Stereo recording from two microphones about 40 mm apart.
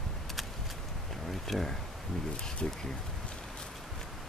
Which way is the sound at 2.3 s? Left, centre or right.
Centre.